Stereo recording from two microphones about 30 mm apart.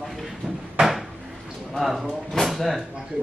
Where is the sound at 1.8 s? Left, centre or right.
Centre.